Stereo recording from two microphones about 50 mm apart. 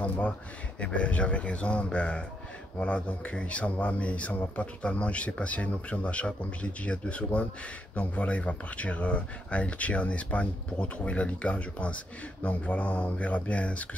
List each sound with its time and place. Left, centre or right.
0.7 s speech: left